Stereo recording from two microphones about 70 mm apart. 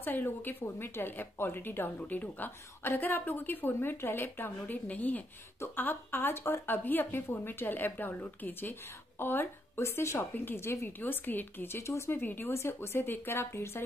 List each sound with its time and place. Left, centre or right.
0.0 s speech: left
11.0 s speech: left